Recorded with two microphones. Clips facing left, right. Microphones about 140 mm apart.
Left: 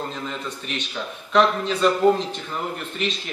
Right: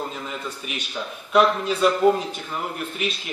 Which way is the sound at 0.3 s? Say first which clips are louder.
Left 1 dB; 5° right (ahead or behind).